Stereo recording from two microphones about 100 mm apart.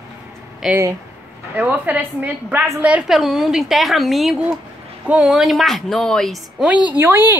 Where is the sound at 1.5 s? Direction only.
15° right (ahead or behind).